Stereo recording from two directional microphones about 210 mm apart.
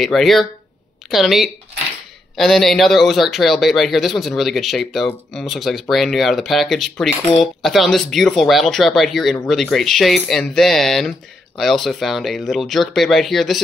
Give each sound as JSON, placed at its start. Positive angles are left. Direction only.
{"t": 0.0, "sound": "speech", "side_deg": 0}